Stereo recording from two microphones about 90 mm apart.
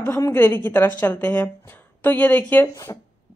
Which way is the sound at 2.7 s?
35° left (ahead or behind).